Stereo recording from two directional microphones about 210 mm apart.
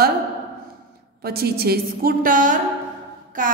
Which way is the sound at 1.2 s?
45° right (ahead or behind).